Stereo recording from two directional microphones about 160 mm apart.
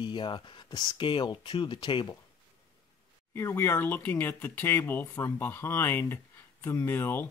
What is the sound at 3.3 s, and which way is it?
Speech, 15° left (ahead or behind).